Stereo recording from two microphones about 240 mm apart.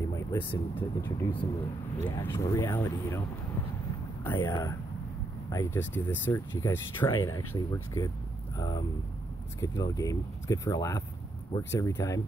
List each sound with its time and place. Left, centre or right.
0.1 s speech: centre
4.2 s speech: centre